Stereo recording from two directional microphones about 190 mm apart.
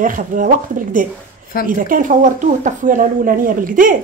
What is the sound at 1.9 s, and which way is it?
A woman's voice, 40° right (ahead or behind).